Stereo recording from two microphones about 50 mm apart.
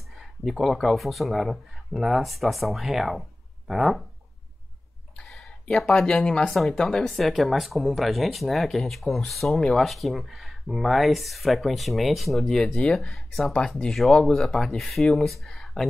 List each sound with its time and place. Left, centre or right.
0.2 s speech: centre
5.2 s a sound: centre
5.9 s speech: centre
6.5 s speech: centre
14.6 s speech: centre